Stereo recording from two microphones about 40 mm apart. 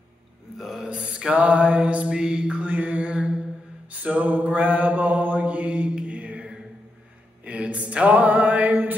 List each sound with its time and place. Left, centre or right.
0.6 s a sound: centre
0.8 s mantra: right
1.3 s mantra: right